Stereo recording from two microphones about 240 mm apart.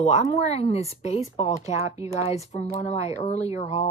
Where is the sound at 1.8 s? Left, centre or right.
Centre.